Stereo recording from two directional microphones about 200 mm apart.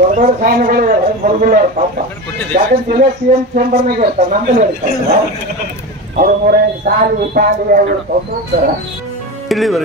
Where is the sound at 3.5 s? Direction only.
40° right (ahead or behind).